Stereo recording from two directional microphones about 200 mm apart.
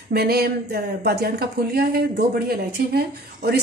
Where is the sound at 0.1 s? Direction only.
50° right (ahead or behind).